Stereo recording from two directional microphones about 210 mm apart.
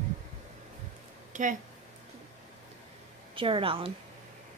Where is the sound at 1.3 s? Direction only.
35° right (ahead or behind).